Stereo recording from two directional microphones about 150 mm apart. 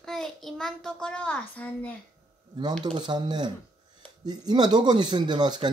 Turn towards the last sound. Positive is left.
turn(degrees=-30)  # may be behind; listen again after turning